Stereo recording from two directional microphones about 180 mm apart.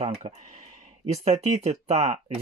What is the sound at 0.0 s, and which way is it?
Speech, 40° right (ahead or behind).